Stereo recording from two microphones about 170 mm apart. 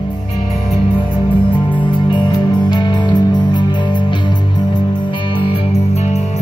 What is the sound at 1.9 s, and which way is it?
Music, 25° left (ahead or behind).